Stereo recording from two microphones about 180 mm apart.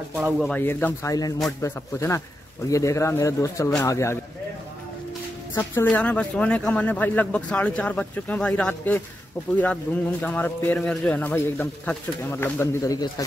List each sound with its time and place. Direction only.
0.4 s speech: 10° left (ahead or behind)
5.6 s speech: 10° left (ahead or behind)